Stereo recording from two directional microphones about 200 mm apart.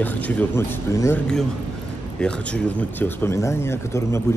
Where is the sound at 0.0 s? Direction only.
10° left (ahead or behind).